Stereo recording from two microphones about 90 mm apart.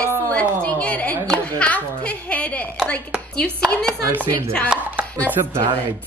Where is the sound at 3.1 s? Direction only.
10° right (ahead or behind).